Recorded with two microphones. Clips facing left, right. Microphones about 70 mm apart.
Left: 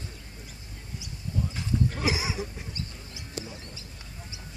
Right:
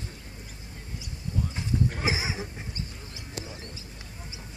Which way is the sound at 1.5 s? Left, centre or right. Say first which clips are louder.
Even; right.